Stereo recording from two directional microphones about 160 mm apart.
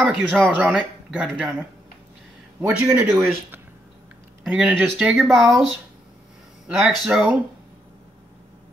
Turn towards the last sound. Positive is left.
turn(degrees=0)  # may be behind; listen again after turning